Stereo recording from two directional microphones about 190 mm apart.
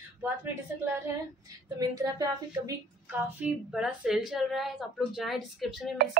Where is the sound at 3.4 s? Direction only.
5° right (ahead or behind).